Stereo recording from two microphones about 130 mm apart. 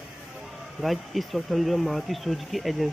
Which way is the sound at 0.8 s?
Centre (ahead or behind).